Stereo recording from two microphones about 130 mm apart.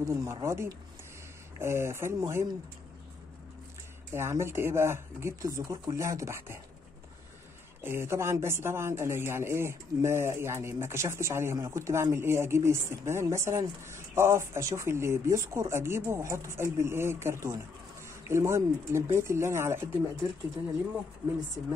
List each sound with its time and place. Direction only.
0.0 s speech: 25° right (ahead or behind)
4.1 s speech: 20° right (ahead or behind)
7.8 s speech: 20° right (ahead or behind)